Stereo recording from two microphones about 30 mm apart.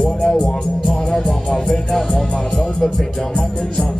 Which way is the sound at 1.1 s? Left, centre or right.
Centre.